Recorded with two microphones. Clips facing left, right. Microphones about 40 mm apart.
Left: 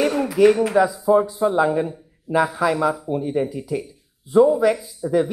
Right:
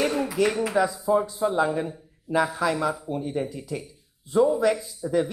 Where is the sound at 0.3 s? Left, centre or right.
Centre.